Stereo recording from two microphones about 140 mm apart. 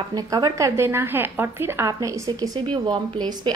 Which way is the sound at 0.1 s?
25° right (ahead or behind).